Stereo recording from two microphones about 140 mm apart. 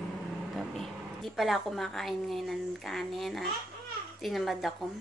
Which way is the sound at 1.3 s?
Centre (ahead or behind).